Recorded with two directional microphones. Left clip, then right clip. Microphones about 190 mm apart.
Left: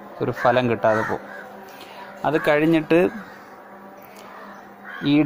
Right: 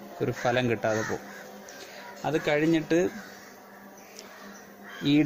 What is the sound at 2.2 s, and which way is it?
Speech, 20° left (ahead or behind).